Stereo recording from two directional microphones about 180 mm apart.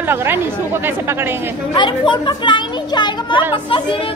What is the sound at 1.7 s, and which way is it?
Speech, 25° left (ahead or behind).